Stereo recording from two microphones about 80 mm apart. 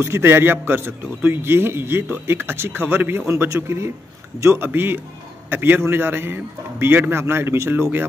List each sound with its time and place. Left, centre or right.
0.0 s a man's voice: right